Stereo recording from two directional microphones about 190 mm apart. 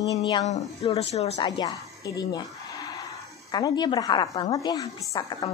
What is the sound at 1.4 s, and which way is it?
A woman's voice, 20° left (ahead or behind).